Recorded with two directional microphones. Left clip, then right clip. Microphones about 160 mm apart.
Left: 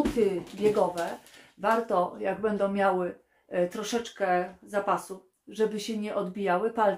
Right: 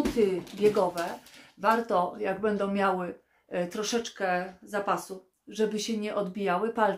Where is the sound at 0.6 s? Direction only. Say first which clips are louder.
Even; 15° right (ahead or behind).